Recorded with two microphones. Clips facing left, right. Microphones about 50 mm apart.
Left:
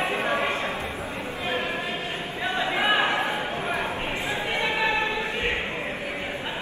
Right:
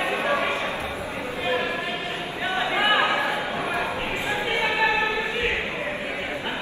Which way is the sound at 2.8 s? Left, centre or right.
Right.